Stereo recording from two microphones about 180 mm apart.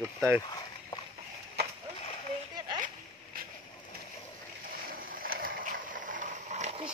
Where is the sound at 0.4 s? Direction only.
25° left (ahead or behind).